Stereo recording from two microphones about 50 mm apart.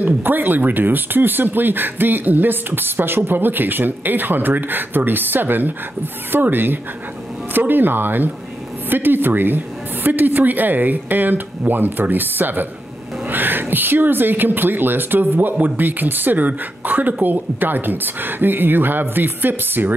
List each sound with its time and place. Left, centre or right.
0.0 s a woman's voice: right